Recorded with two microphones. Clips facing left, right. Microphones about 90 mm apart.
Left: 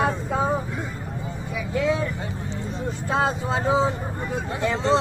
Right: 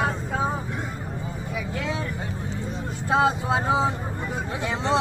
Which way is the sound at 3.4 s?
5° right (ahead or behind).